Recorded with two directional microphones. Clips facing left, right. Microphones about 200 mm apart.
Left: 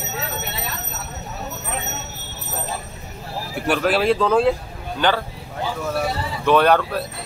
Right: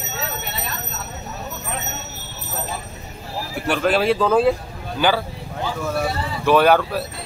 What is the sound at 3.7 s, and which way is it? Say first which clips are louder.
Speech: even; centre (ahead or behind).